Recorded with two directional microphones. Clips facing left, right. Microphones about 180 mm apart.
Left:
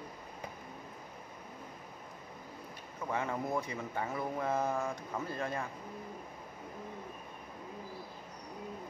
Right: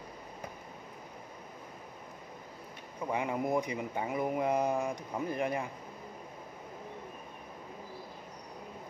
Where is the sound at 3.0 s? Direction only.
15° right (ahead or behind).